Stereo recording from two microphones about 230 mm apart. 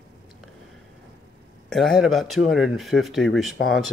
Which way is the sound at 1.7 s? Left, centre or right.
Centre.